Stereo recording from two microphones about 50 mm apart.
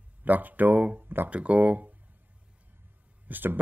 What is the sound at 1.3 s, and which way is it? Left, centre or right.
Speech, right.